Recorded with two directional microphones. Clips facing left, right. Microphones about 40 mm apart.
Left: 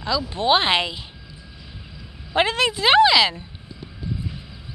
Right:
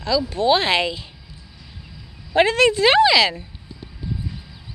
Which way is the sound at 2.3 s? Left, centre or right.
Centre.